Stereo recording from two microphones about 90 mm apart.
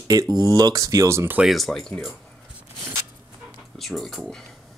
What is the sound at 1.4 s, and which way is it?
Speech, centre (ahead or behind).